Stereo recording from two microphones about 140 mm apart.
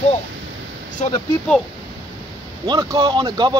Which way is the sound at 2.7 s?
35° right (ahead or behind).